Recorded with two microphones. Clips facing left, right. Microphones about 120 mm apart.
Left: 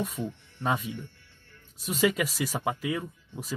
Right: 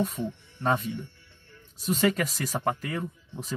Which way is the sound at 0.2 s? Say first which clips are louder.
Right 2 dB; 10° left (ahead or behind).